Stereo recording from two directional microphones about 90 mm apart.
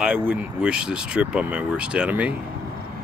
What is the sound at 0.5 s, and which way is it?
Speech, 10° right (ahead or behind).